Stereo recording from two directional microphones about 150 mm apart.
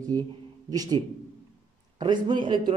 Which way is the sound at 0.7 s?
25° right (ahead or behind).